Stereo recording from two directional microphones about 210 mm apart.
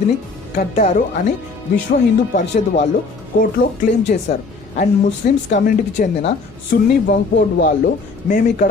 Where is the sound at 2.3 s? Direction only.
35° left (ahead or behind).